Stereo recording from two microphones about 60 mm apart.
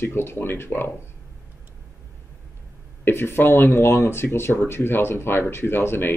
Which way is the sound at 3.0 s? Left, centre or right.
Left.